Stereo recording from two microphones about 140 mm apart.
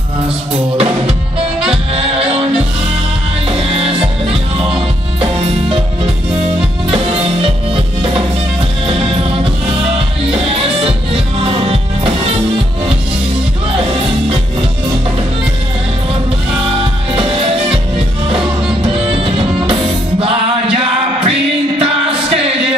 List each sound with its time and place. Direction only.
0.7 s music: 45° right (ahead or behind)
3.4 s music: 45° right (ahead or behind)
7.4 s music: 40° right (ahead or behind)
17.1 s music: 40° right (ahead or behind)